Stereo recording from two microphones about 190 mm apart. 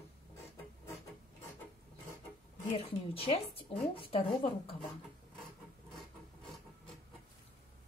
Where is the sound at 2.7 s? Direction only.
30° left (ahead or behind).